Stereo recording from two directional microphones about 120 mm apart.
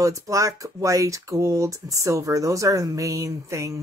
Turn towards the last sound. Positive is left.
turn(degrees=-25)  # may be behind; listen again after turning